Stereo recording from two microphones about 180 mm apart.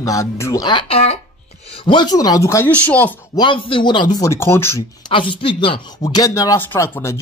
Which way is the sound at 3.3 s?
25° left (ahead or behind).